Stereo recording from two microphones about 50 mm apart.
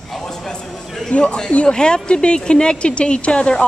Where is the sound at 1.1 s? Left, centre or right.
Left.